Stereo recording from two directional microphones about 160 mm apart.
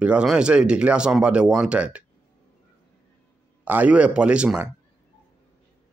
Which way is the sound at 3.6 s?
10° right (ahead or behind).